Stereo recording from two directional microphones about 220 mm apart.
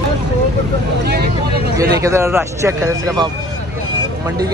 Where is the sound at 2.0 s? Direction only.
15° right (ahead or behind).